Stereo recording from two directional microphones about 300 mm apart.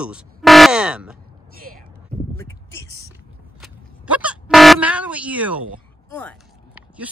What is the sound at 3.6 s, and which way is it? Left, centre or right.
Vehicle horn, centre.